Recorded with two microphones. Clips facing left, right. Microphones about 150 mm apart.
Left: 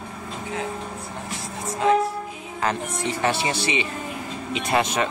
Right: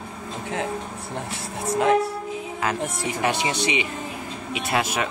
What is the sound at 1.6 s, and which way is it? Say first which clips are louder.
Music: right 1 dB; 65° right (ahead or behind).